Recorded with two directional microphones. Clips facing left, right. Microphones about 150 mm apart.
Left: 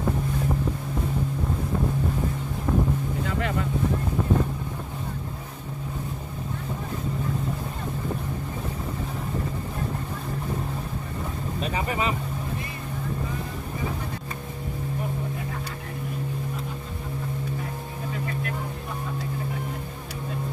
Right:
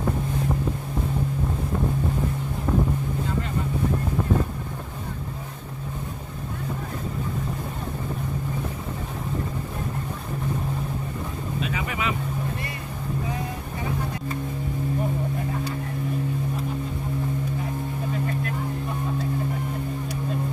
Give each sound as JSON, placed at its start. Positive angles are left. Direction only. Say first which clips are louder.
{"t": 3.3, "sound": "boat", "louder": "left 1 dB", "side_deg": 75}
{"t": 11.6, "sound": "vehicle", "louder": "left 2 dB", "side_deg": 35}